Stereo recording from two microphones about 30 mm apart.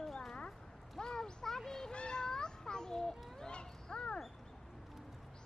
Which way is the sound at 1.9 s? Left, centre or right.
Left.